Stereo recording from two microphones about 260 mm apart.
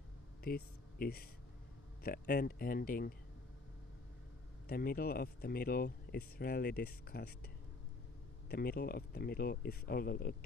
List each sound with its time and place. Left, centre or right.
0.5 s speech: left
4.6 s speech: left